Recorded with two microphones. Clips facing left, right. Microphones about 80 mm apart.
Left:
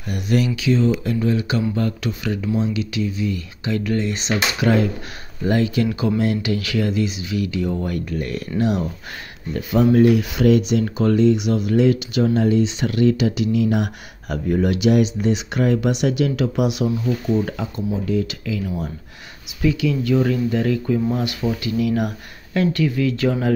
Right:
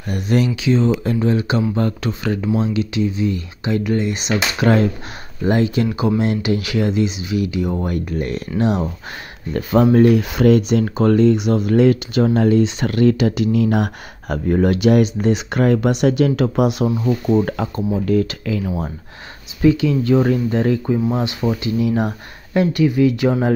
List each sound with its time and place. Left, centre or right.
0.1 s speech: right
4.6 s speech: right
5.4 s speech: right
9.5 s speech: right
17.0 s speech: right
19.6 s speech: right